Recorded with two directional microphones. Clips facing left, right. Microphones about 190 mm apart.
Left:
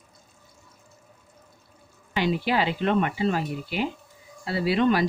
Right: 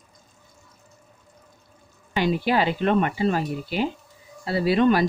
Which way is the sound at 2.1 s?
45° right (ahead or behind).